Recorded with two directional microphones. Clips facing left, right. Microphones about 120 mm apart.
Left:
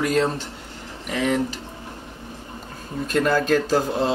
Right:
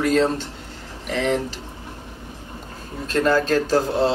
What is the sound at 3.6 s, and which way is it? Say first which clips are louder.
Speech: right 2 dB; 15° left (ahead or behind).